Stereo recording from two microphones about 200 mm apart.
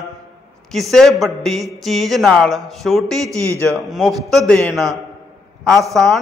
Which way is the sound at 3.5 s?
15° right (ahead or behind).